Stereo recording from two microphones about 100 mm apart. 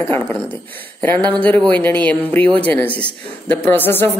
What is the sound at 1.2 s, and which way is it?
Speech, 15° left (ahead or behind).